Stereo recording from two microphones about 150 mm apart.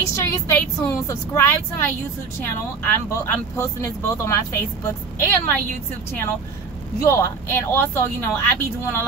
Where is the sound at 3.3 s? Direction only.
20° left (ahead or behind).